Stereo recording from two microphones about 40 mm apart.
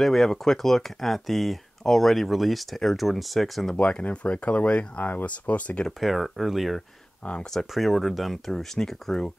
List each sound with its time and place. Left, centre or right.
0.0 s speech: centre
3.7 s speech: left
4.9 s speech: left
5.2 s speech: left
5.9 s speech: centre